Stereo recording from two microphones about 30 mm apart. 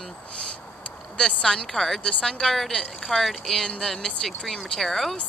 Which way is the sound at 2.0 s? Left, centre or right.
Left.